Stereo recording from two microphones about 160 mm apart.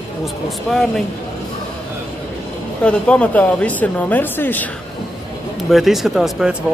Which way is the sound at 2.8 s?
5° left (ahead or behind).